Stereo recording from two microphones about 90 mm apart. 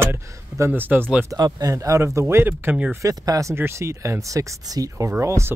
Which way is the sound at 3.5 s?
30° right (ahead or behind).